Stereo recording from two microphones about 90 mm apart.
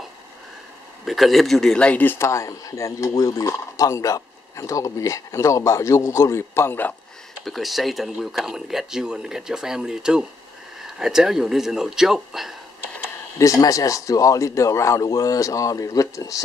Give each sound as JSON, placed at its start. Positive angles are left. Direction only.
{"t": 1.0, "sound": "speech", "side_deg": 0}
{"t": 7.4, "sound": "speech", "side_deg": 0}
{"t": 13.4, "sound": "speech", "side_deg": 40}